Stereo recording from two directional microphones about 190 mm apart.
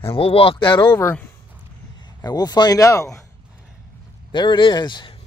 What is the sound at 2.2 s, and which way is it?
Speech, 20° left (ahead or behind).